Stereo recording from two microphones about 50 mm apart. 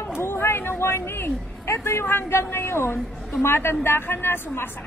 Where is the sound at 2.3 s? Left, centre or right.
Left.